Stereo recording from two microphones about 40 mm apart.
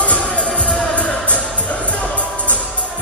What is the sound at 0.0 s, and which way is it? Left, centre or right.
Music, left.